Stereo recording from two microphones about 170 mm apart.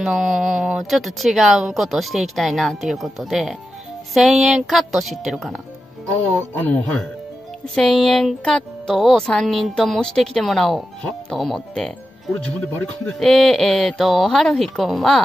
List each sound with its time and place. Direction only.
0.0 s speech: 5° right (ahead or behind)
6.0 s speech: 10° left (ahead or behind)